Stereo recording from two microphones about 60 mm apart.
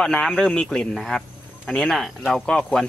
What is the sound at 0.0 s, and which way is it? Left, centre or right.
Speech, centre.